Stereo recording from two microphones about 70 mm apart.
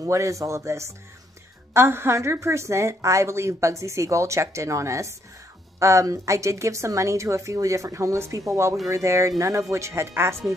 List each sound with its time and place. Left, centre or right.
0.0 s a woman's voice: right